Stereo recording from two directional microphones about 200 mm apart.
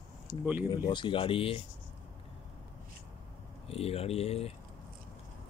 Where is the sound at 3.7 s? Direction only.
30° left (ahead or behind).